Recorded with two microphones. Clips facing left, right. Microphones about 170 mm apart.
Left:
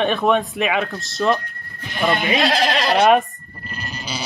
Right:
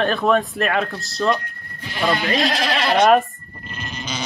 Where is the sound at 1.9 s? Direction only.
20° left (ahead or behind).